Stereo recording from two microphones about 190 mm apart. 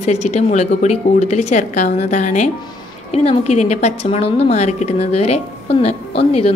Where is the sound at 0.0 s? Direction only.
35° left (ahead or behind).